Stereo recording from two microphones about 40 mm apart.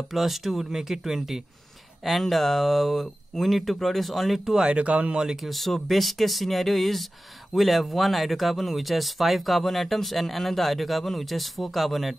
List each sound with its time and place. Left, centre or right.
0.1 s speech: centre
4.7 s speech: right
5.1 s speech: centre
5.4 s speech: centre